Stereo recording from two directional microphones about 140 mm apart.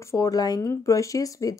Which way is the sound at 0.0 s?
20° left (ahead or behind).